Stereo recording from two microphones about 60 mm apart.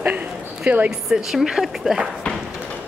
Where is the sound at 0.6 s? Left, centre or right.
Right.